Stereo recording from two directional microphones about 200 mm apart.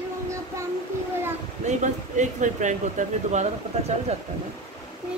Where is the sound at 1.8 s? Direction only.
35° right (ahead or behind).